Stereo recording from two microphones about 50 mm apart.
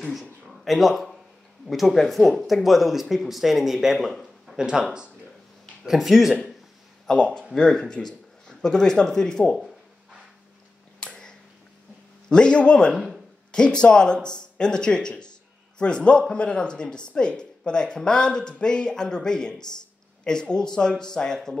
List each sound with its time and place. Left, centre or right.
0.1 s speech: centre
5.9 s speech: centre
7.2 s speech: centre
11.0 s a sound: centre
12.3 s speech: centre
12.9 s a sound: centre
13.5 s speech: centre